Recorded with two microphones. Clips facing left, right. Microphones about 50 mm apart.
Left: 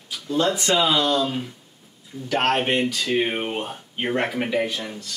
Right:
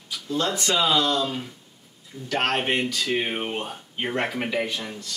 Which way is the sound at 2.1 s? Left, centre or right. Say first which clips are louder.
Left 4 dB; left.